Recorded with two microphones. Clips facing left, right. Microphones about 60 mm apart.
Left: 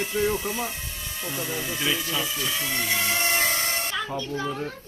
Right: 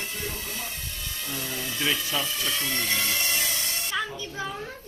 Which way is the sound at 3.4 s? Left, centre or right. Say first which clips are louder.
Left 6 dB; left.